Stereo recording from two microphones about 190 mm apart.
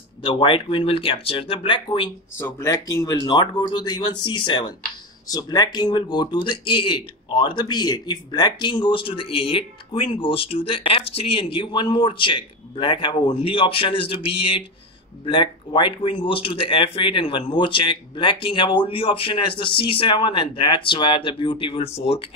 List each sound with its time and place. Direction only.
0.2 s speech: 25° left (ahead or behind)